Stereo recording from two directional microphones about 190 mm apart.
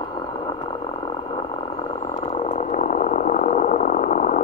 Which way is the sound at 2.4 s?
40° left (ahead or behind).